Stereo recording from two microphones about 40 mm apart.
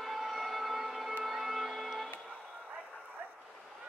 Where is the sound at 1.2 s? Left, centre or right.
Centre.